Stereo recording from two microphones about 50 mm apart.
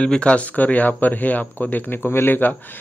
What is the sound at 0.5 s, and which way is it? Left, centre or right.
Speech, left.